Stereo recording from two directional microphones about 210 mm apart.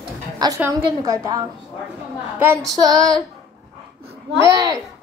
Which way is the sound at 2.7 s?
15° right (ahead or behind).